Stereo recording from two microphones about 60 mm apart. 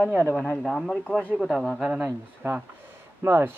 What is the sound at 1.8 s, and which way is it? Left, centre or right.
Speech, centre.